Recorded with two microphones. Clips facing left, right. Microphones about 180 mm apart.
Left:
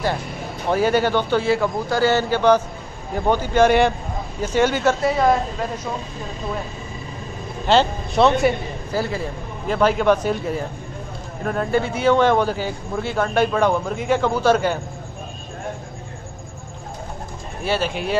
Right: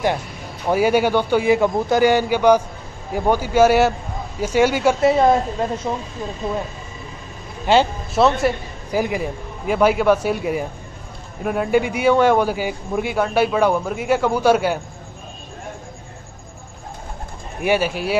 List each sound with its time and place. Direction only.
0.7 s a man's voice: 10° right (ahead or behind)
5.0 s a woman's voice: 25° right (ahead or behind)
7.6 s speech: 5° right (ahead or behind)
8.9 s a man's voice: 15° right (ahead or behind)
17.6 s a man's voice: 10° right (ahead or behind)